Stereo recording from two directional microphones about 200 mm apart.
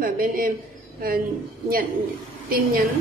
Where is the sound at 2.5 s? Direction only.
45° right (ahead or behind).